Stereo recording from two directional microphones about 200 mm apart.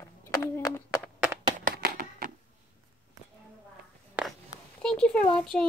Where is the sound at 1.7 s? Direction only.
50° right (ahead or behind).